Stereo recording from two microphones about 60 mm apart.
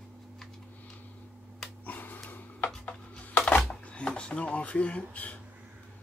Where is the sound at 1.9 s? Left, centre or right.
Left.